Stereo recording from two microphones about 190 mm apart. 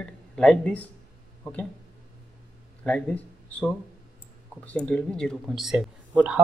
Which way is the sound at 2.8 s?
5° left (ahead or behind).